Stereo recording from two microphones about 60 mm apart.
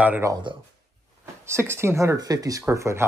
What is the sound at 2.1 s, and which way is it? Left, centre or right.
Speech, right.